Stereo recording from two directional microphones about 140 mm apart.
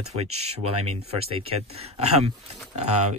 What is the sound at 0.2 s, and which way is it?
Speech, 50° right (ahead or behind).